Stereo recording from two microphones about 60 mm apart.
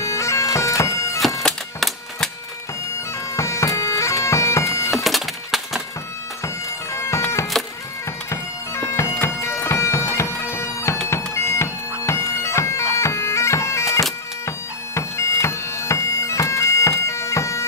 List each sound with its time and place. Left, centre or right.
0.0 s bagpipes: left
1.4 s music: centre
3.3 s bagpipes: left
4.9 s music: centre
6.4 s bagpipes: left
8.3 s bagpipes: left